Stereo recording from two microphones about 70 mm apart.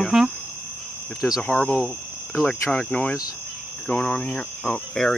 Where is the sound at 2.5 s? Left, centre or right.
Centre.